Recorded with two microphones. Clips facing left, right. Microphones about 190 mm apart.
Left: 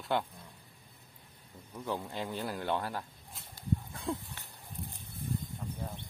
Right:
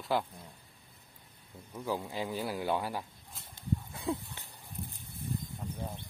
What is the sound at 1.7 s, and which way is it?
Speech, 5° right (ahead or behind).